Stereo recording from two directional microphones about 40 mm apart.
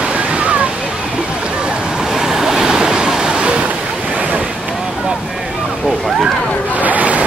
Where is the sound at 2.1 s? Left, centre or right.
Centre.